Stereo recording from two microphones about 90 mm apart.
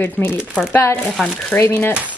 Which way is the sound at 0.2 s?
15° left (ahead or behind).